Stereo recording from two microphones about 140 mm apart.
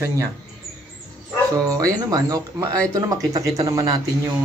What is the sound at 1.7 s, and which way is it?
Speech, 25° right (ahead or behind).